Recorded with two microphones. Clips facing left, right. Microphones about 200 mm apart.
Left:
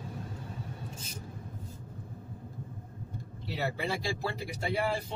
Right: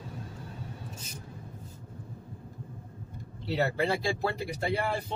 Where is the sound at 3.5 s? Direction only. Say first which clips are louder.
Right 5 dB; 65° right (ahead or behind).